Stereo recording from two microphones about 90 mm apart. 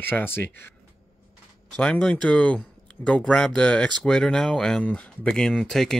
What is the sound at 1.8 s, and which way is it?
Speech, 10° left (ahead or behind).